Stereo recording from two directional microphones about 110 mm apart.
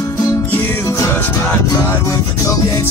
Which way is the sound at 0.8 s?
30° left (ahead or behind).